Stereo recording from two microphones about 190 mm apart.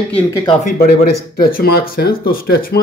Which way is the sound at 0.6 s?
50° left (ahead or behind).